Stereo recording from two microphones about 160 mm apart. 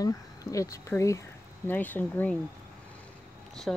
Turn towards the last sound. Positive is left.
turn(degrees=5)  # may be behind; listen again after turning